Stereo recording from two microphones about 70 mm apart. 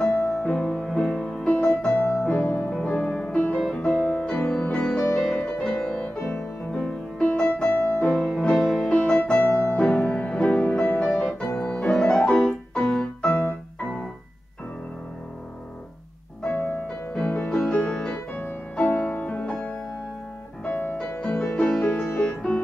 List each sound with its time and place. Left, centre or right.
0.0 s music: left
2.7 s music: centre
3.3 s music: centre
6.2 s music: centre
8.2 s music: centre
8.9 s music: centre
9.5 s music: left
9.8 s music: centre
12.4 s keyboard: centre
16.4 s music: left
16.8 s music: centre
20.6 s music: left